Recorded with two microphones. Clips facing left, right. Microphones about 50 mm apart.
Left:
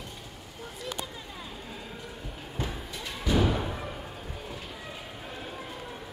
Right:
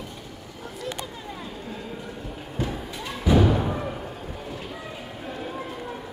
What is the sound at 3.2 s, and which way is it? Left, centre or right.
Music, centre.